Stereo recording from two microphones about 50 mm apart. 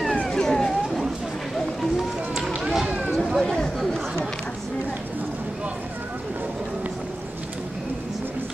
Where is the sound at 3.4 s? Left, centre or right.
Centre.